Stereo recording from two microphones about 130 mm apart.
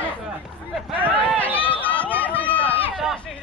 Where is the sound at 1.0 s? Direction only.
10° right (ahead or behind).